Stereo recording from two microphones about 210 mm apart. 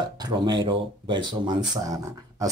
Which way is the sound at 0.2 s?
20° right (ahead or behind).